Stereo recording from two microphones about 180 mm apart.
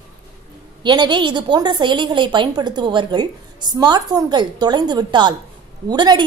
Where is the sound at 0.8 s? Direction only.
25° right (ahead or behind).